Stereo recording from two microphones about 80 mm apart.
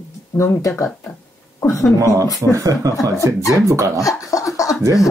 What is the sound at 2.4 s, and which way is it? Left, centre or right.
Speech, right.